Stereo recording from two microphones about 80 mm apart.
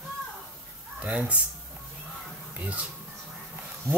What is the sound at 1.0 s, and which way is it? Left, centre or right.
Speech, centre.